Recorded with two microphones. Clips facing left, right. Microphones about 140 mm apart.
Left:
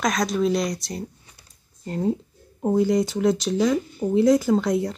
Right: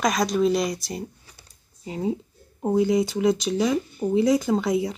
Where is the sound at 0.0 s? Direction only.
Centre (ahead or behind).